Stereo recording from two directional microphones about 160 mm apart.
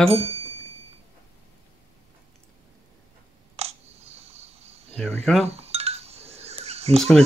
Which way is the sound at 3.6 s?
40° right (ahead or behind).